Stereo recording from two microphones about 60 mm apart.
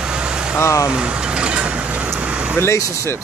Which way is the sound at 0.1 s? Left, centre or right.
Centre.